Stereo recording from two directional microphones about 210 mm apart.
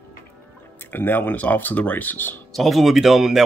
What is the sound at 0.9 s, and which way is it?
Speech, 10° left (ahead or behind).